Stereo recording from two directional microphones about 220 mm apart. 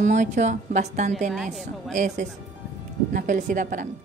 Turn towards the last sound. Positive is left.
turn(degrees=-35)  # may be behind; listen again after turning